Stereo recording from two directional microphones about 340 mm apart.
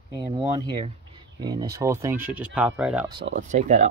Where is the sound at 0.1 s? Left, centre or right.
Centre.